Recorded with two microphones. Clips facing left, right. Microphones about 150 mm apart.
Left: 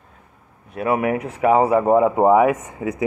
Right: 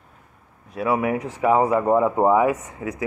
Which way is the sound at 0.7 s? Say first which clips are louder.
Left 2 dB; 55° left (ahead or behind).